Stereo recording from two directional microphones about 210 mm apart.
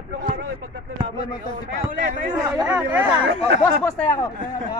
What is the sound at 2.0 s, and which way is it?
Speech, 40° right (ahead or behind).